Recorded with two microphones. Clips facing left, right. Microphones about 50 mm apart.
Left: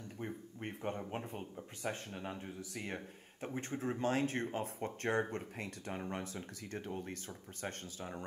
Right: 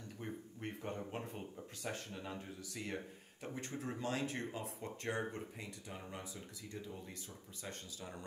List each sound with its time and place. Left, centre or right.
0.2 s speech: left